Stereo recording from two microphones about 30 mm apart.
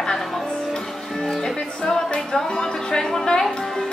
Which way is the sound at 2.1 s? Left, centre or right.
Left.